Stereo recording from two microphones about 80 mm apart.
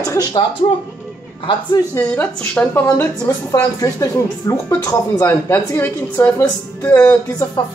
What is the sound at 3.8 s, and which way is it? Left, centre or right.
Speech, left.